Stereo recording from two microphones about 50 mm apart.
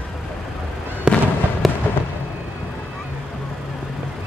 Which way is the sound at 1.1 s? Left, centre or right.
Centre.